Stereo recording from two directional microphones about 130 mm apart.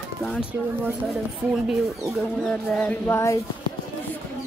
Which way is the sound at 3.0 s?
20° left (ahead or behind).